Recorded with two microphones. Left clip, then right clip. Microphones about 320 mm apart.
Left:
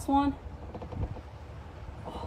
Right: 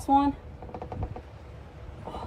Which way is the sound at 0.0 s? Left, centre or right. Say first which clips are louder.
Right 4 dB; centre.